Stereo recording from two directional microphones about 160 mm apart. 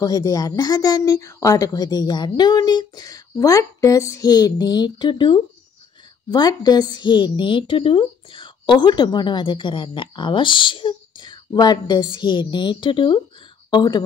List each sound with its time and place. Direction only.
0.0 s a woman's voice: 25° left (ahead or behind)